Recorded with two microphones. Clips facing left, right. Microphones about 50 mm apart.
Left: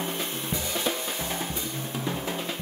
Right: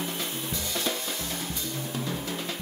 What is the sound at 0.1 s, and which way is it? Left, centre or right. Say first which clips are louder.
Drum kit: left 2 dB; left.